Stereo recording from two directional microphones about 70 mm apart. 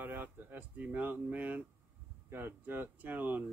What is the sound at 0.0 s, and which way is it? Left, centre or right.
Speech, right.